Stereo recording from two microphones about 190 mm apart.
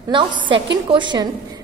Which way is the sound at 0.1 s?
25° right (ahead or behind).